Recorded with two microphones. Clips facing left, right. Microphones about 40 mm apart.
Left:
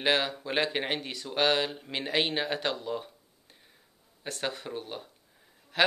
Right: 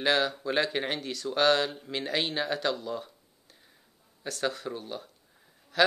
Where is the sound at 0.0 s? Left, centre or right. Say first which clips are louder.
Right 1 dB; left.